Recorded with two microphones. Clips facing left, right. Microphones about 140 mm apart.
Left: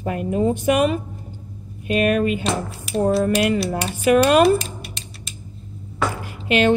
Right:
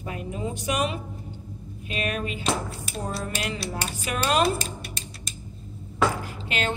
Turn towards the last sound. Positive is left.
turn(degrees=75)  # may be behind; listen again after turning